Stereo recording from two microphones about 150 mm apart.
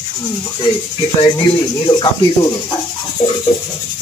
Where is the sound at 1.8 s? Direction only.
30° left (ahead or behind).